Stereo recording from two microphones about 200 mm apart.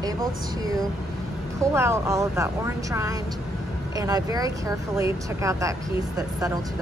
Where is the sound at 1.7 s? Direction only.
15° right (ahead or behind).